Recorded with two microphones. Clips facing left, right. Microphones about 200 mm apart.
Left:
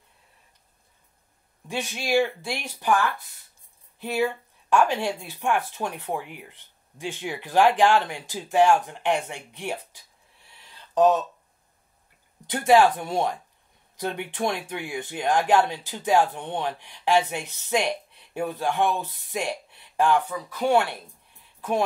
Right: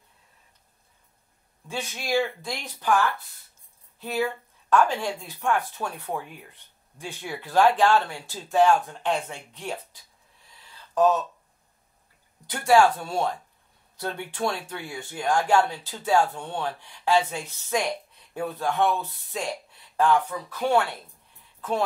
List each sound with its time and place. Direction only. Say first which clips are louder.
1.7 s speech: left 2 dB; 15° left (ahead or behind)
4.0 s speech: left 2 dB; 15° left (ahead or behind)
12.4 s speech: left 1 dB; 20° left (ahead or behind)